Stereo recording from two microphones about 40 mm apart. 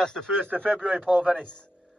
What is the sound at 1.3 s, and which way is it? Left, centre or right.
Speech, left.